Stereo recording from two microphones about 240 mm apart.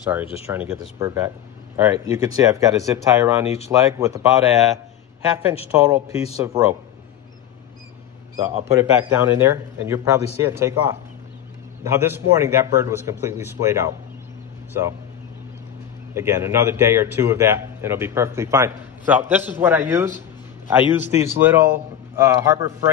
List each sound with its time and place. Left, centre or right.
0.5 s a man's voice: centre
5.7 s a man's voice: centre
8.4 s a man's voice: centre
16.2 s a man's voice: centre